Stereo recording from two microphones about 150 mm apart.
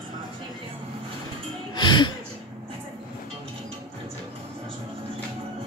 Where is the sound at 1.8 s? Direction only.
30° left (ahead or behind).